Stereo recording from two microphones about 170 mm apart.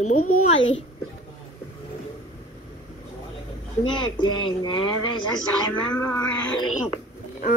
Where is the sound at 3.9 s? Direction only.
30° left (ahead or behind).